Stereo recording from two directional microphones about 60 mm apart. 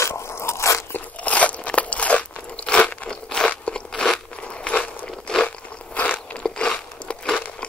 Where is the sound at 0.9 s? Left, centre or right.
Left.